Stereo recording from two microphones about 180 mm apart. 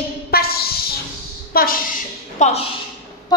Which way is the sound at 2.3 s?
40° left (ahead or behind).